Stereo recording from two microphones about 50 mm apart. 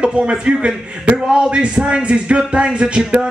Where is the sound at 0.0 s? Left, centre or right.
Centre.